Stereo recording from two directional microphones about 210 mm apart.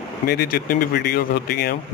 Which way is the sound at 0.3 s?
45° left (ahead or behind).